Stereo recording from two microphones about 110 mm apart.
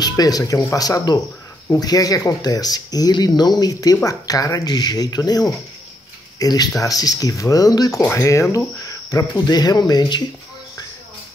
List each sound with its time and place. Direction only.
0.0 s speech: 35° left (ahead or behind)